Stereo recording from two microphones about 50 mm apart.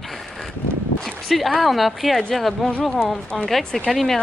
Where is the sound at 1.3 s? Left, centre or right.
Centre.